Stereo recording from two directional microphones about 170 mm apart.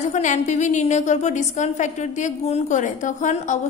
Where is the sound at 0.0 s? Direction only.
45° left (ahead or behind).